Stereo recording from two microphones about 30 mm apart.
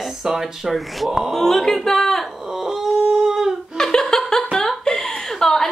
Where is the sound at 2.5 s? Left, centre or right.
Centre.